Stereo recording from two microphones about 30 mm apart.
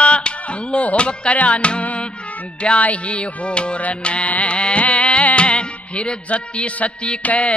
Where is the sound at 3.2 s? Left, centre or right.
Left.